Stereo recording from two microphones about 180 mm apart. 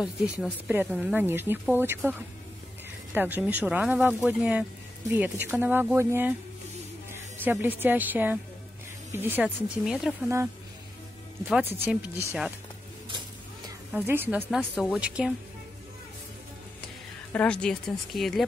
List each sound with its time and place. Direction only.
0.0 s speech: 5° right (ahead or behind)
7.3 s speech: 10° right (ahead or behind)
11.4 s speech: 10° right (ahead or behind)
13.9 s speech: 10° right (ahead or behind)
17.3 s speech: 5° left (ahead or behind)